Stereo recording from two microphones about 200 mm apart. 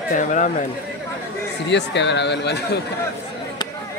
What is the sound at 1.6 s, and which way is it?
Speech, 60° left (ahead or behind).